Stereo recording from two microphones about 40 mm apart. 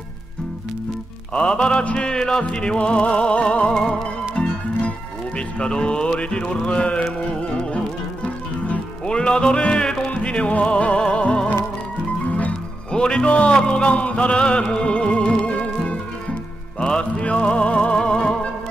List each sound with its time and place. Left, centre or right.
1.3 s music: left
3.7 s music: centre
5.6 s music: left
6.6 s a sound: left
7.5 s music: left
12.9 s music: left
17.2 s music: left